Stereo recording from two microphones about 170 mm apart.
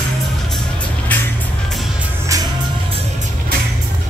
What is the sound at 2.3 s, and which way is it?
Music, 20° right (ahead or behind).